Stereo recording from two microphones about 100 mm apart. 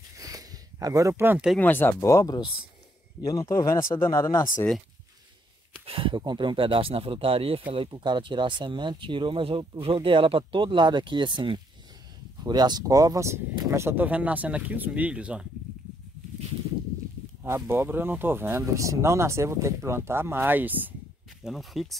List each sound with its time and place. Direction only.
0.2 s a sound: 35° right (ahead or behind)
1.6 s speech: 20° left (ahead or behind)
2.0 s speech: 35° left (ahead or behind)
5.9 s speech: 60° right (ahead or behind)
7.9 s speech: 50° right (ahead or behind); by 15.4 s 10° right (ahead or behind)
17.4 s speech: 25° right (ahead or behind)
21.5 s speech: centre (ahead or behind)